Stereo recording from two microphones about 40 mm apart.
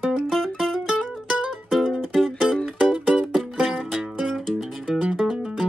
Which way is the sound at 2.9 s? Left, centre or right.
Right.